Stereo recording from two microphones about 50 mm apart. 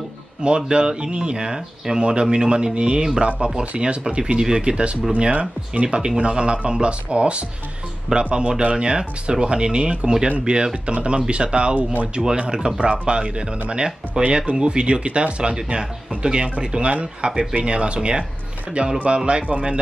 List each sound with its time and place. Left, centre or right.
0.4 s speech: centre